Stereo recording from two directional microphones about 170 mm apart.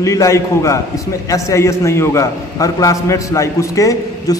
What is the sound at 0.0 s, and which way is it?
A man's voice, 20° left (ahead or behind).